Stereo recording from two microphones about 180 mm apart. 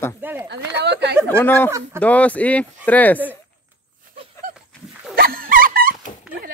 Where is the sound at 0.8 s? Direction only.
70° right (ahead or behind).